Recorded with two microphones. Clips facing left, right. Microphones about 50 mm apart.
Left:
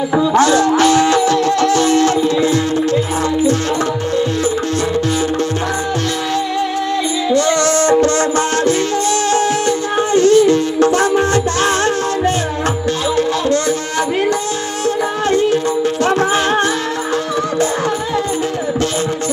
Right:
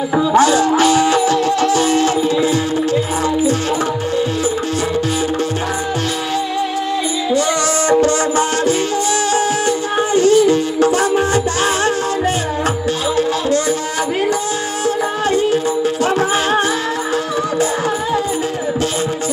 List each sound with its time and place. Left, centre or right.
0.1 s music: centre
0.4 s music: centre
7.3 s music: centre
15.2 s music: centre